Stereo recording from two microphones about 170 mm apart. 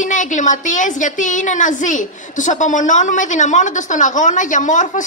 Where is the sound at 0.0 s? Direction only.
45° left (ahead or behind).